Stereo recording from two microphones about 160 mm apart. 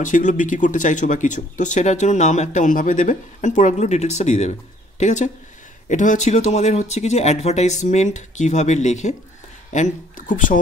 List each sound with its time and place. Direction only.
0.0 s speech: 50° left (ahead or behind)